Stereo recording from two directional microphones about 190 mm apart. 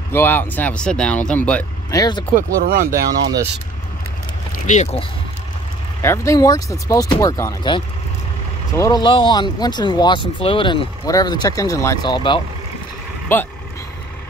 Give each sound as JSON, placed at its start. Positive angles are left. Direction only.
{"t": 0.1, "sound": "speech", "side_deg": 10}
{"t": 1.9, "sound": "speech", "side_deg": 20}
{"t": 2.3, "sound": "speech", "side_deg": -50}
{"t": 2.9, "sound": "speech", "side_deg": -15}
{"t": 4.6, "sound": "speech", "side_deg": 40}
{"t": 6.0, "sound": "speech", "side_deg": 15}
{"t": 13.3, "sound": "speech", "side_deg": 10}